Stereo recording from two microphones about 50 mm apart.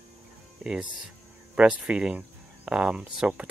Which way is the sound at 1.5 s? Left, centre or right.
Right.